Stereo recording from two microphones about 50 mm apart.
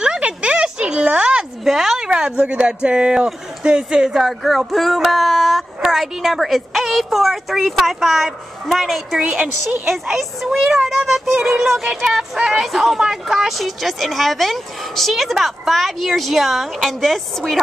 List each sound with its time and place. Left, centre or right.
0.0 s a sound: centre
1.6 s speech: centre
2.0 s speech: centre
4.3 s speech: centre
5.8 s speech: centre
9.2 s speech: centre
9.8 s speech: centre